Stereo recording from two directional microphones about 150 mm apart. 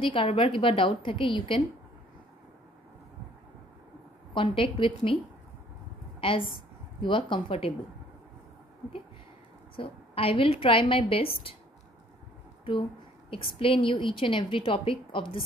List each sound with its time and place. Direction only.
0.0 s a woman's voice: 35° left (ahead or behind)
4.3 s a woman's voice: 35° left (ahead or behind)
7.0 s a woman's voice: 35° left (ahead or behind)
9.8 s a woman's voice: 40° left (ahead or behind)
13.3 s a woman's voice: 35° left (ahead or behind)